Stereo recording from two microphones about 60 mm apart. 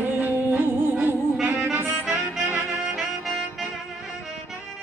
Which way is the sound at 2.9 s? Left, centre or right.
Centre.